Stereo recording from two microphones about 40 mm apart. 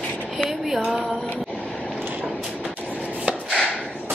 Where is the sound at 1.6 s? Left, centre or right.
Left.